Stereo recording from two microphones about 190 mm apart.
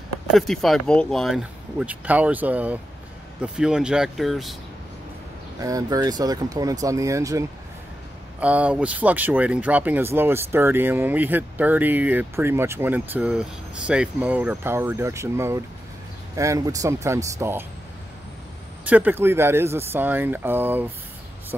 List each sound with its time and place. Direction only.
0.3 s speech: centre (ahead or behind)
5.6 s speech: 20° right (ahead or behind)
18.9 s speech: 10° right (ahead or behind)